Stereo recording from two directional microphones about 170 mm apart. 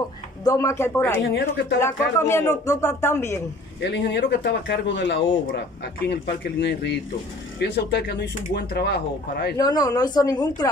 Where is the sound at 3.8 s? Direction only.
90° left.